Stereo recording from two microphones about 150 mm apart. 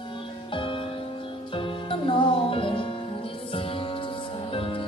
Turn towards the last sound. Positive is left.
turn(degrees=35)  # may be behind; listen again after turning